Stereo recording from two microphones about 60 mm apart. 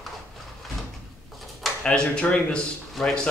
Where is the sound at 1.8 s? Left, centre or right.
Centre.